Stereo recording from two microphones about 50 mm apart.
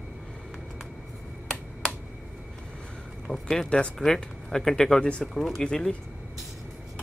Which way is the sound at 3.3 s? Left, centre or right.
Centre.